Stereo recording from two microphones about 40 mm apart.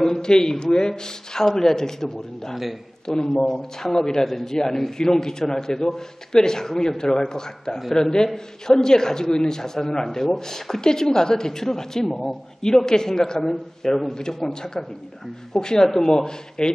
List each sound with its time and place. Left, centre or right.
0.0 s a man's voice: centre
2.5 s a man's voice: centre
3.3 s a man's voice: centre
4.2 s a man's voice: centre
12.6 s a man's voice: centre